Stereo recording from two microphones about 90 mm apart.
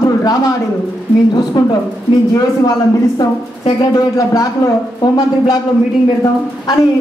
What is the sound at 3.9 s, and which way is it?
A woman's voice, 45° left (ahead or behind).